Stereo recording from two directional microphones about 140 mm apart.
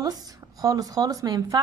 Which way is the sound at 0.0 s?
25° right (ahead or behind).